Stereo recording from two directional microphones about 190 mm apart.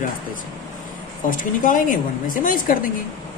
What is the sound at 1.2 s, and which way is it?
Speech, 45° left (ahead or behind).